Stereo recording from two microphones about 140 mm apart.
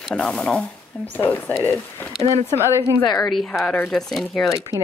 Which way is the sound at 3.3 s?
Centre (ahead or behind).